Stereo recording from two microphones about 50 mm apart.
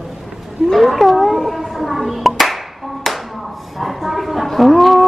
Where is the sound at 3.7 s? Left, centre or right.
Centre.